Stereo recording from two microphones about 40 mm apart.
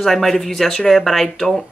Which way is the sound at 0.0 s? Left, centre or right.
Centre.